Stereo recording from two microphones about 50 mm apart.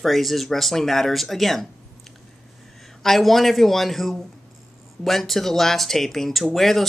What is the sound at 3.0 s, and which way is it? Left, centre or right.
Speech, centre.